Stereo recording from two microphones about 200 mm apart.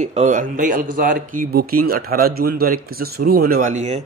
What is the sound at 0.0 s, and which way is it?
Speech, 35° right (ahead or behind).